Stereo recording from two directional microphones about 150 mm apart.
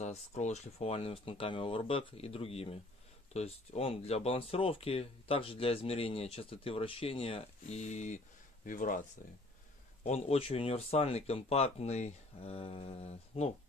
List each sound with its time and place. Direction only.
0.0 s speech: 50° left (ahead or behind)
8.6 s speech: 60° left (ahead or behind)
10.0 s speech: 45° left (ahead or behind)